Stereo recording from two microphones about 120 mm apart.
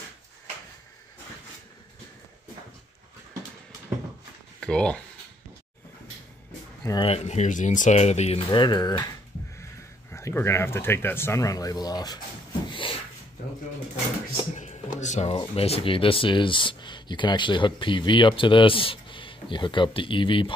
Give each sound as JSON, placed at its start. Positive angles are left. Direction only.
{"t": 4.6, "sound": "speech", "side_deg": 10}
{"t": 7.0, "sound": "speech", "side_deg": 55}
{"t": 8.5, "sound": "speech", "side_deg": 35}
{"t": 10.1, "sound": "speech", "side_deg": 20}
{"t": 12.6, "sound": "a sound", "side_deg": 45}
{"t": 14.5, "sound": "a sound", "side_deg": 85}
{"t": 15.3, "sound": "speech", "side_deg": 55}